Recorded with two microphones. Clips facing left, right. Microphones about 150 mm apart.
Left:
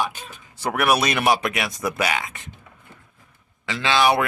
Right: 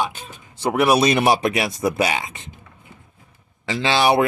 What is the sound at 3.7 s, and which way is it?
Speech, 30° right (ahead or behind).